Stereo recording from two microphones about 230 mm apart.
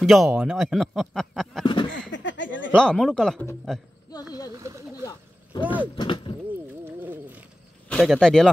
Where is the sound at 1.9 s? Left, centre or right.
Left.